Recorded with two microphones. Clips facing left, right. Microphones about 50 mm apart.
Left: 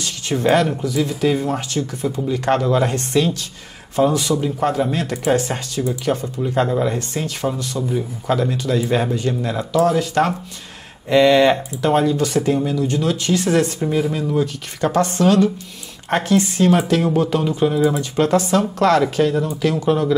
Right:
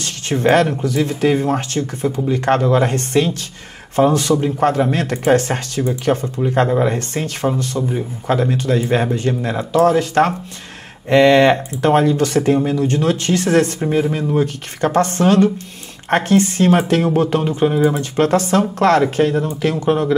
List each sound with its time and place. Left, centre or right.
0.0 s speech: right
6.4 s speech: right
7.0 s speech: right
13.7 s speech: right